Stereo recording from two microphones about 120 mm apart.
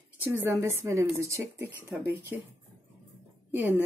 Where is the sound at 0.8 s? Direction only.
25° right (ahead or behind).